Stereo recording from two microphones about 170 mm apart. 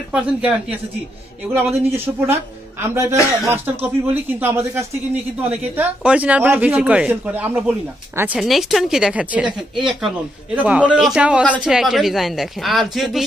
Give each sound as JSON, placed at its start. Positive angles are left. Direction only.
{"t": 0.1, "sound": "speech", "side_deg": -5}